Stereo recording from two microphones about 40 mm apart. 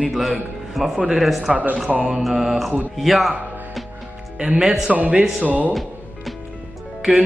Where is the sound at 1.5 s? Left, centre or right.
Right.